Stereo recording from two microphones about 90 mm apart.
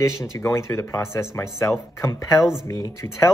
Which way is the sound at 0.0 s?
35° left (ahead or behind).